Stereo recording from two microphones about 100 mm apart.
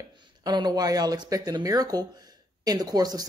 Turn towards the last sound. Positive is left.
turn(degrees=-40)  # may be behind; listen again after turning